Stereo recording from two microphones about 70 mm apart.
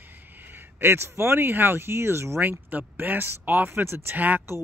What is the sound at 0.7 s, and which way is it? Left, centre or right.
Speech, right.